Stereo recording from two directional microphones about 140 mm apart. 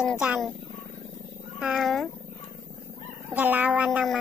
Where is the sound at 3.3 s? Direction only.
10° right (ahead or behind).